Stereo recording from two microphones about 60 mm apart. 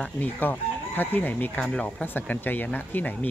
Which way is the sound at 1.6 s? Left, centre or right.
Centre.